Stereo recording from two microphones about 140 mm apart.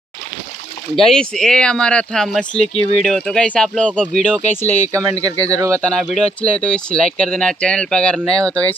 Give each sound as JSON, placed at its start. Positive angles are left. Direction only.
{"t": 0.9, "sound": "speech", "side_deg": 5}
{"t": 4.6, "sound": "speech", "side_deg": 55}
{"t": 4.9, "sound": "speech", "side_deg": -25}
{"t": 5.8, "sound": "speech", "side_deg": 5}